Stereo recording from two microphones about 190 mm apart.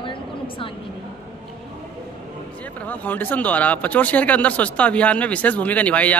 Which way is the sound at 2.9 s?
10° left (ahead or behind).